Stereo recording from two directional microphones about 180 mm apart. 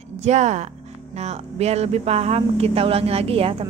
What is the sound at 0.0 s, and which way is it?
A woman's voice, 40° right (ahead or behind).